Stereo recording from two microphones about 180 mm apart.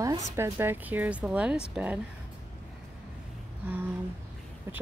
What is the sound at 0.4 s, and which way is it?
Speech, 10° right (ahead or behind).